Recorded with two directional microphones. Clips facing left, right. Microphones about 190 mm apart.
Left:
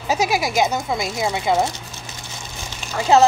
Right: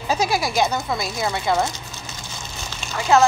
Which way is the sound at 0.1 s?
15° left (ahead or behind).